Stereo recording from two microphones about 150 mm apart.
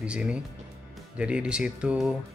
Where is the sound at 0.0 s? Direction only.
5° right (ahead or behind).